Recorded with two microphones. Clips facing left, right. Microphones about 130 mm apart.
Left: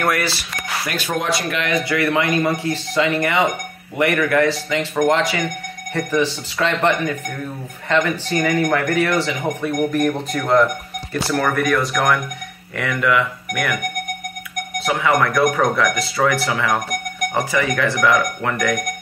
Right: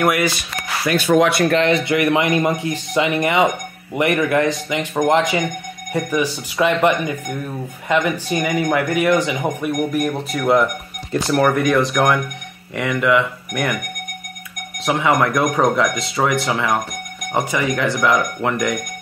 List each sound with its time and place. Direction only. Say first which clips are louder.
0.0 s speech: right 3 dB; 15° right (ahead or behind)
1.5 s speech: right 5 dB; 30° right (ahead or behind)
2.0 s speech: right 2 dB; 20° right (ahead or behind)
9.9 s speech: left 1 dB; 5° right (ahead or behind)
11.1 s speech: right 4 dB; 20° right (ahead or behind)
14.9 s speech: right 1 dB; 20° right (ahead or behind)